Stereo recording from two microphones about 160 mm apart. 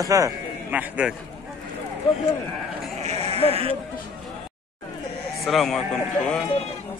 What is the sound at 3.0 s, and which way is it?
Sheep, 40° right (ahead or behind).